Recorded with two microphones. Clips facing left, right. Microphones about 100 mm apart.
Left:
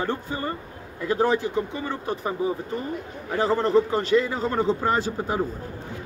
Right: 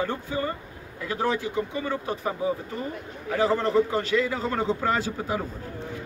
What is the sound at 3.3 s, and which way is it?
A man's voice, 30° left (ahead or behind).